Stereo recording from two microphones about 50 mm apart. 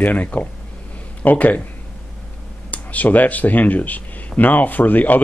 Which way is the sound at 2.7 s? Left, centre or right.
Left.